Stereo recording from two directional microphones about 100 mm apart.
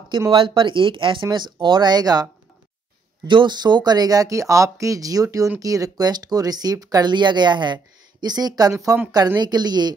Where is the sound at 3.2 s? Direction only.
50° right (ahead or behind); by 9.0 s 35° right (ahead or behind).